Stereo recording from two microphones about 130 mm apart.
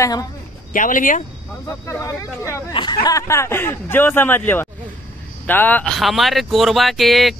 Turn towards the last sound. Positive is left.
turn(degrees=0)  # may be behind; listen again after turning